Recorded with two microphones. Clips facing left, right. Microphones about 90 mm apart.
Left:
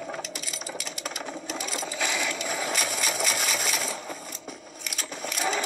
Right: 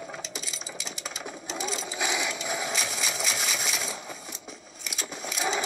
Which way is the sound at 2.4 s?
15° right (ahead or behind).